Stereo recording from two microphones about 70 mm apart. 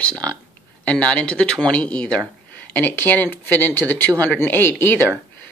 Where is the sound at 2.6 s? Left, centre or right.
Left.